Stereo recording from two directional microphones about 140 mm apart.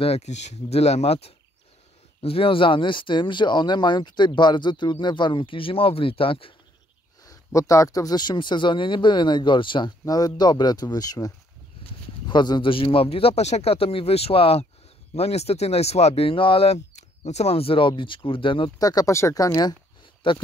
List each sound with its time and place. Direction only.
0.0 s speech: 50° left (ahead or behind)
7.2 s speech: 25° left (ahead or behind)
20.2 s speech: 35° left (ahead or behind)